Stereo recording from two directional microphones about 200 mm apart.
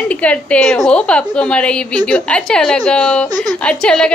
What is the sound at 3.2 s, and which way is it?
Speech, 20° right (ahead or behind).